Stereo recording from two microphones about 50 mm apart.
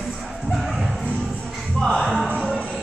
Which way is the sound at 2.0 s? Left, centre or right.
Centre.